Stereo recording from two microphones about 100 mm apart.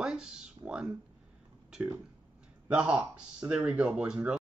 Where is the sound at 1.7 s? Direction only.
5° right (ahead or behind).